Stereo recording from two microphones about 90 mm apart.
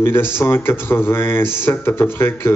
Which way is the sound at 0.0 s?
25° left (ahead or behind).